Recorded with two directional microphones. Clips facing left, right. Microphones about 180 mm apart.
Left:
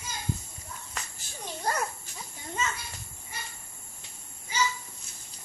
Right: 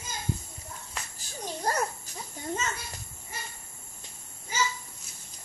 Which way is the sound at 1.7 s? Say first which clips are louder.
Right 1 dB; 40° right (ahead or behind).